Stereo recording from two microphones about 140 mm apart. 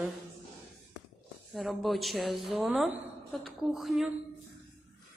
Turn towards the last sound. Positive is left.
turn(degrees=0)  # may be behind; listen again after turning